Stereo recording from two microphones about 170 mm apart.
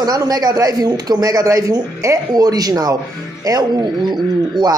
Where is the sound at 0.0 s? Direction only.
20° right (ahead or behind).